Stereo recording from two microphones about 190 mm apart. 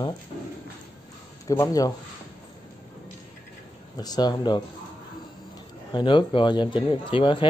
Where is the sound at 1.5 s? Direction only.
20° left (ahead or behind).